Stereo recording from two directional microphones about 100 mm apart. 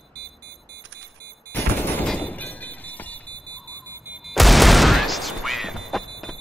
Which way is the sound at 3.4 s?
45° right (ahead or behind).